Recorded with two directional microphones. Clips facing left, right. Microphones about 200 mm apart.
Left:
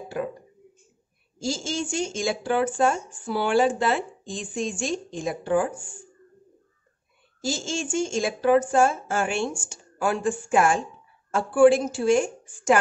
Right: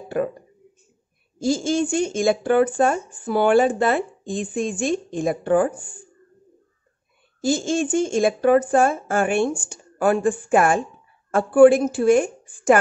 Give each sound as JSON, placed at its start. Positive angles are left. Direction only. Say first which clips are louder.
{"t": 0.2, "sound": "speech", "louder": "right 6 dB", "side_deg": -50}
{"t": 1.4, "sound": "speech", "louder": "right 8 dB", "side_deg": -55}
{"t": 7.4, "sound": "speech", "louder": "right 8 dB", "side_deg": -55}